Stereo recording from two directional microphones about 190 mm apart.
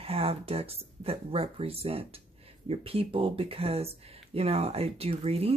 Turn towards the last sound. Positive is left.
turn(degrees=-30)  # may be behind; listen again after turning